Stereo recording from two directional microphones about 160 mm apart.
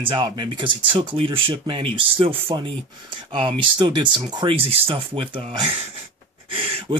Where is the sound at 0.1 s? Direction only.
30° right (ahead or behind).